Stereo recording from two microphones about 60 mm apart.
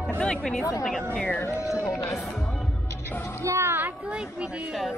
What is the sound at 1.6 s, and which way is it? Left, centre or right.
Speech, left.